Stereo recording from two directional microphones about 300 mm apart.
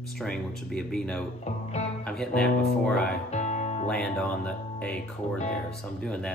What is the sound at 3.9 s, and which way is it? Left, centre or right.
Speech, centre.